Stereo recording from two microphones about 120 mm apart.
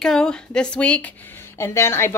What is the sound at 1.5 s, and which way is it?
Speech, 20° left (ahead or behind).